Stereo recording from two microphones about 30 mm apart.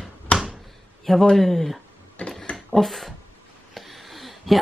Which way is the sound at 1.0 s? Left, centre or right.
Centre.